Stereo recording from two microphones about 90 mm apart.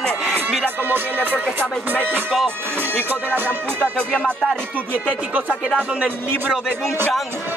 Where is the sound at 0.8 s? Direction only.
20° right (ahead or behind).